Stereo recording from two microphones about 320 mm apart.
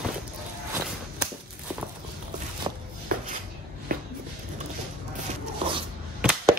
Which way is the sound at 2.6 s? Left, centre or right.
Centre.